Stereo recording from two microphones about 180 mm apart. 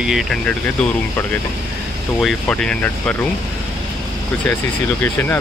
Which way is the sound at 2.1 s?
5° left (ahead or behind).